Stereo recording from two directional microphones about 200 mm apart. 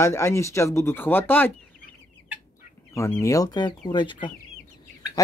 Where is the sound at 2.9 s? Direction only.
15° left (ahead or behind).